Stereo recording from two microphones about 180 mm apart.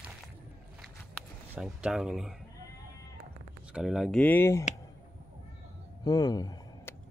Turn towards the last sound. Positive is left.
turn(degrees=20)  # may be behind; listen again after turning